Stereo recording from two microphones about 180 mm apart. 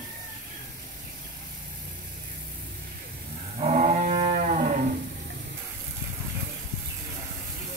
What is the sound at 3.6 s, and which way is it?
Livestock, 40° right (ahead or behind).